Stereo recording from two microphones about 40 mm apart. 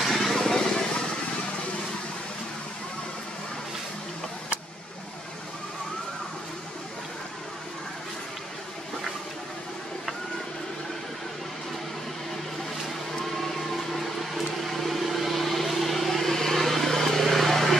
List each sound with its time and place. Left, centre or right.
0.0 s vehicle: centre
0.4 s vehicle: centre
12.8 s a sound: centre